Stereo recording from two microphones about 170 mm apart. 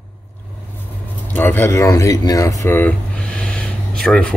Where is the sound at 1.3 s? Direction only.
15° left (ahead or behind).